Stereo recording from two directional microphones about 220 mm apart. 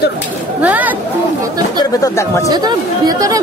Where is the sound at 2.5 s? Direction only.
15° right (ahead or behind).